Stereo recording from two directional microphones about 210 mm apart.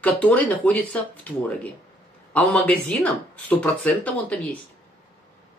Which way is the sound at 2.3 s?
5° left (ahead or behind).